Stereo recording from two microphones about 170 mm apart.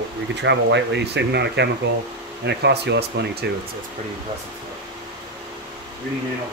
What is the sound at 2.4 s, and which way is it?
Speech, 80° right.